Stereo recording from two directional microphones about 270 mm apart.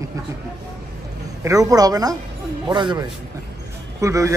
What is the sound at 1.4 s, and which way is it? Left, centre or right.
A man's voice, centre.